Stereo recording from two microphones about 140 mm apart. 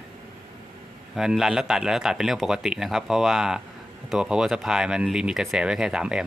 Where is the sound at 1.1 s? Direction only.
Centre (ahead or behind).